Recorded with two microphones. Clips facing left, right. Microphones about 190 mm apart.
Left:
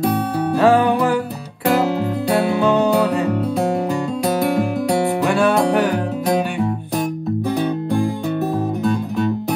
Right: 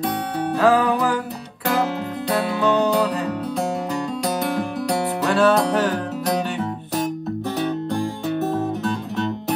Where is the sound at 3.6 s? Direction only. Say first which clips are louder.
Left 5 dB; centre (ahead or behind).